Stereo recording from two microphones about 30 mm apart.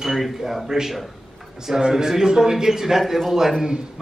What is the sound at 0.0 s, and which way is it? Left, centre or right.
Speech, centre.